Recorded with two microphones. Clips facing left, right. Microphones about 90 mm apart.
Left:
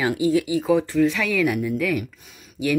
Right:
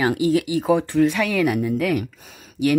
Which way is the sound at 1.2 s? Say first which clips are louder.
Right 2 dB; 55° right (ahead or behind).